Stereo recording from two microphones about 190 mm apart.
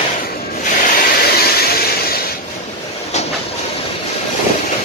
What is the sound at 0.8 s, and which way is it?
Vehicle, 55° left (ahead or behind).